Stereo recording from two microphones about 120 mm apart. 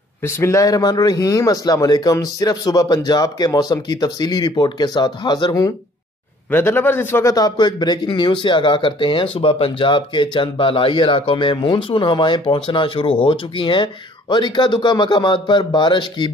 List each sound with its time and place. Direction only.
0.2 s speech: 25° left (ahead or behind)
6.5 s a man's voice: 20° left (ahead or behind)
7.3 s speech: 35° left (ahead or behind)